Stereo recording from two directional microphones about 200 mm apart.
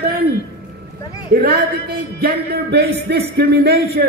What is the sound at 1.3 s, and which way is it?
Speech, 50° right (ahead or behind).